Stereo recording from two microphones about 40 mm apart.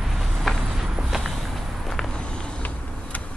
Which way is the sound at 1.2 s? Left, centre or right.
Centre.